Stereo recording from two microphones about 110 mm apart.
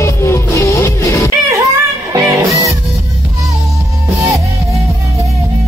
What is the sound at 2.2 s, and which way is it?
Music, 30° right (ahead or behind).